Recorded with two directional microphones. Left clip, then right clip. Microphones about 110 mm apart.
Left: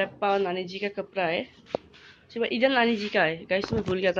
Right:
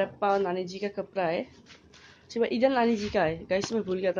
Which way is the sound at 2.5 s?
15° right (ahead or behind).